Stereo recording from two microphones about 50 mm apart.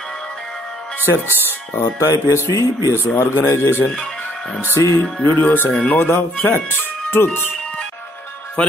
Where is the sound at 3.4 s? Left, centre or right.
Left.